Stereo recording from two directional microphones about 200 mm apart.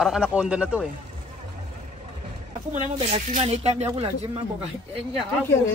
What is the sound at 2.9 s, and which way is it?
Speech, 35° right (ahead or behind).